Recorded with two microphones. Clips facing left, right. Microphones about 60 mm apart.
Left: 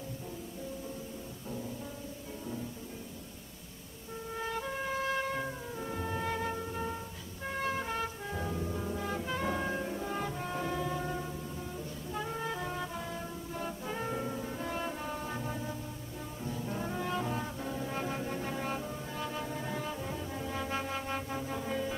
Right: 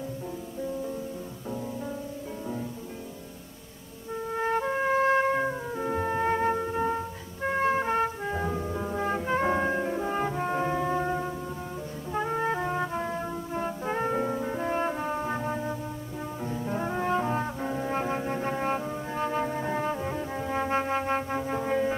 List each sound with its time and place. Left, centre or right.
4.4 s music: right
7.4 s trumpet: right
12.1 s music: right
16.4 s brass instrument: right